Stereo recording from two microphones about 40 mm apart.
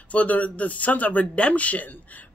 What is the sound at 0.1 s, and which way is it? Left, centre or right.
Speech, left.